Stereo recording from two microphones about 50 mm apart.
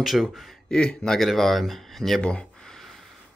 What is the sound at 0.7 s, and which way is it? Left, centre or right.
Speech, centre.